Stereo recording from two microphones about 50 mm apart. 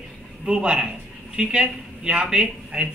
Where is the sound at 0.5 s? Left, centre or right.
Centre.